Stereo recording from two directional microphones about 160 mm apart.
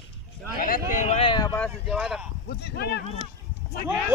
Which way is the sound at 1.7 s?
5° right (ahead or behind).